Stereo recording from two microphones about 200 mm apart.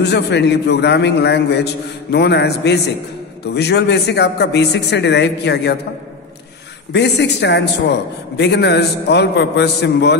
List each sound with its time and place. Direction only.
0.0 s a man's voice: 55° left (ahead or behind)
6.9 s a man's voice: 60° left (ahead or behind)